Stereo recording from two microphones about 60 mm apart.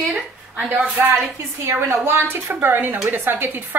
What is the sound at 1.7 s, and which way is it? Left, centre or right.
A woman's voice, right.